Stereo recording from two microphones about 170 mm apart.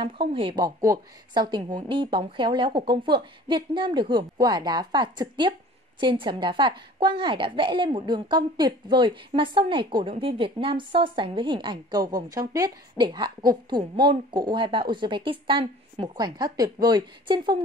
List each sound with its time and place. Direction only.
0.0 s a woman's voice: 30° right (ahead or behind)